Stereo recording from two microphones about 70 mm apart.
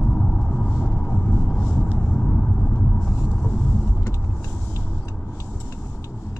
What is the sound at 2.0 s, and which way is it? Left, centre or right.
Vehicle, centre.